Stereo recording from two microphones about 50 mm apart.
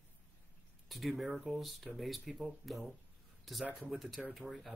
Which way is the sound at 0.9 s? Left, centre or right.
Centre.